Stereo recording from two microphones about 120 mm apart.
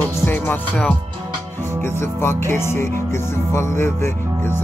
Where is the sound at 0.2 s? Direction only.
15° left (ahead or behind).